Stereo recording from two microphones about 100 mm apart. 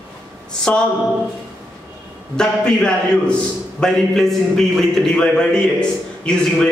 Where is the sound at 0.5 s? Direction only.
10° left (ahead or behind).